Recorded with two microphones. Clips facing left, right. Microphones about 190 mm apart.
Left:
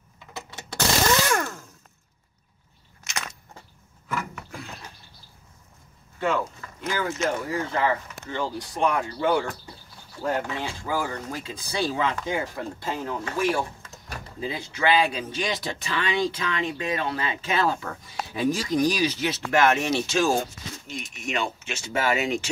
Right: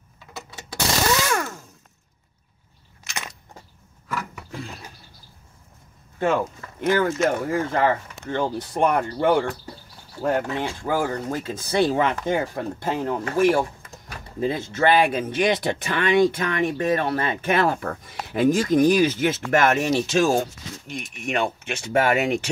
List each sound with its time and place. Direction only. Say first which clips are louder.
6.1 s speech: right 4 dB; 55° right (ahead or behind)